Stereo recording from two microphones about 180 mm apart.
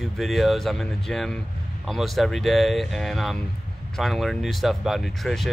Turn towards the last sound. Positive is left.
turn(degrees=0)  # may be behind; listen again after turning